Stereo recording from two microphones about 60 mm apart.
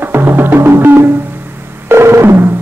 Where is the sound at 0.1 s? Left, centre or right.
Right.